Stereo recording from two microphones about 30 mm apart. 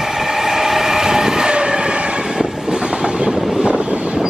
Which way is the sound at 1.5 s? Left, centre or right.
Right.